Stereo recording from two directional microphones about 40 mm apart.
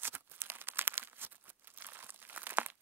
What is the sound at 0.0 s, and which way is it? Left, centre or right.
Crumpling, right.